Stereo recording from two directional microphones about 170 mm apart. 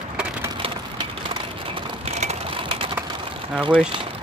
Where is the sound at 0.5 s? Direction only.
25° right (ahead or behind).